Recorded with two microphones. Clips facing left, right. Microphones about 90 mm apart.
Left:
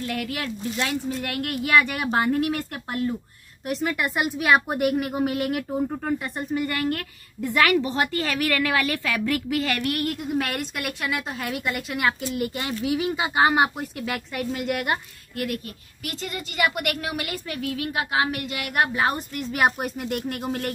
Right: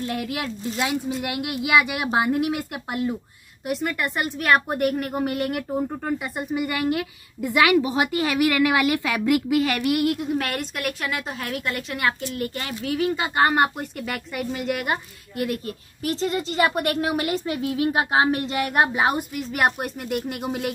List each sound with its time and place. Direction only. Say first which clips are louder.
0.0 s a woman's voice: right 1 dB; 25° right (ahead or behind); by 15.0 s centre (ahead or behind)
15.3 s a woman's voice: right 3 dB; 30° right (ahead or behind); by 20.7 s 10° right (ahead or behind)